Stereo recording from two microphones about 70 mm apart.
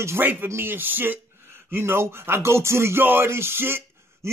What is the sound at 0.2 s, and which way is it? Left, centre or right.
A man's voice, right.